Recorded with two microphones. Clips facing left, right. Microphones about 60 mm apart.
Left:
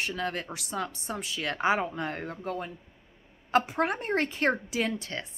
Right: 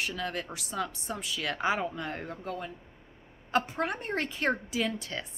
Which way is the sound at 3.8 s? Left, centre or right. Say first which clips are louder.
Left 4 dB; centre.